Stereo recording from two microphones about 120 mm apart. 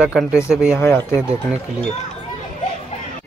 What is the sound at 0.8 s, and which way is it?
Speech, 20° left (ahead or behind).